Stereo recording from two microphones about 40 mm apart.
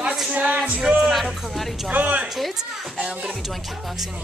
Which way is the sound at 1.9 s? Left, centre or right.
Right.